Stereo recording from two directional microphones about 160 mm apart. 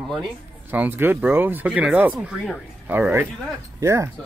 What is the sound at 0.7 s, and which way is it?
Speech, 10° right (ahead or behind).